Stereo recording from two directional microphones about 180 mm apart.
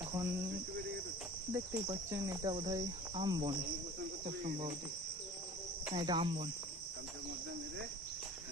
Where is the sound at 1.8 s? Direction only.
20° right (ahead or behind); by 4.7 s 35° right (ahead or behind).